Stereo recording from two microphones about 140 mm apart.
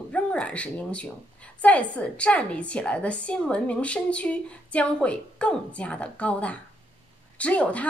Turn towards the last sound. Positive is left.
turn(degrees=10)  # may be behind; listen again after turning